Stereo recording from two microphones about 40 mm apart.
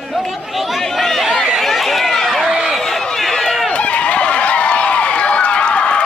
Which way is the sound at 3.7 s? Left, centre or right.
Left.